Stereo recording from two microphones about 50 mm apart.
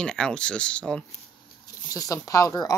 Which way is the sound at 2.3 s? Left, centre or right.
Left.